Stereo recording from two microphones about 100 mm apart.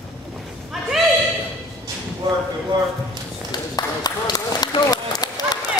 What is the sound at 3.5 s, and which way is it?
Run, 45° left (ahead or behind).